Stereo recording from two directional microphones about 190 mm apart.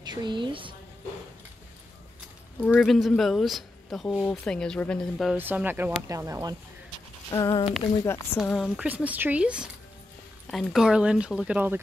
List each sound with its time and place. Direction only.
0.0 s a woman's voice: 20° right (ahead or behind)
2.6 s speech: 5° left (ahead or behind)
5.4 s speech: 10° right (ahead or behind)
7.2 s speech: 20° left (ahead or behind)
8.5 s speech: centre (ahead or behind)